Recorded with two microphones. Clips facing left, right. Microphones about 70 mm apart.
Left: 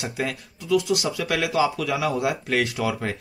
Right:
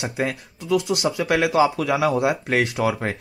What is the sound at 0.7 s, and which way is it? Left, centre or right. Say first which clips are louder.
Speech: even; right.